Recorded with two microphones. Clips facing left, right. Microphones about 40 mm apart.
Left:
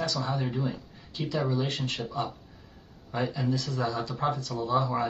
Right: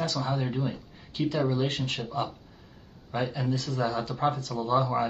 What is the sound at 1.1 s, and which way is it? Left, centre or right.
Speech, right.